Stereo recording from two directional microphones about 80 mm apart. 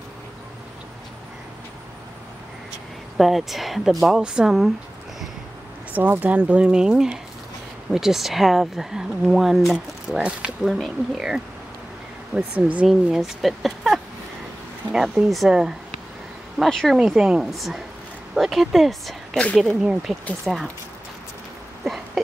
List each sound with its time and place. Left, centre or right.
3.2 s speech: centre
5.9 s speech: right; by 11.4 s centre
12.5 s speech: centre
12.8 s speech: centre
19.3 s speech: centre
19.8 s speech: centre
20.4 s speech: centre
21.8 s a sound: centre